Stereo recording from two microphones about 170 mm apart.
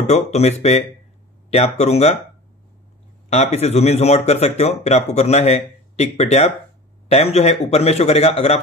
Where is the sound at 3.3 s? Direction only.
40° left (ahead or behind).